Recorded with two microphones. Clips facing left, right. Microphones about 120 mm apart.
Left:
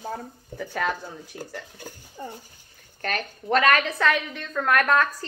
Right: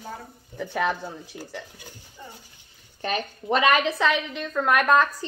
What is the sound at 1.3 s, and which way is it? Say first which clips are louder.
Speech: left 1 dB; 55° left (ahead or behind).